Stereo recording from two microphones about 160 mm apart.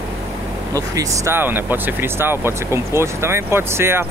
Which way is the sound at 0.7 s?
20° right (ahead or behind).